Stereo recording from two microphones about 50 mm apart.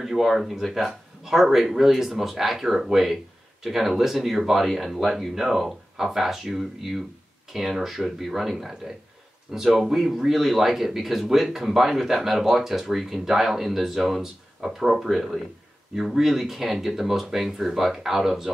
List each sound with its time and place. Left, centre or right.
0.0 s speech: centre